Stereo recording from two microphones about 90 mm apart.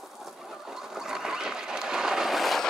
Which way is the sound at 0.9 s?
5° right (ahead or behind).